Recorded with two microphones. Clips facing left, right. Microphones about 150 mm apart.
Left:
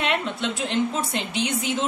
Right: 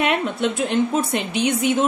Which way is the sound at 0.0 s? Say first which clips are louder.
Right 5 dB; 55° right (ahead or behind).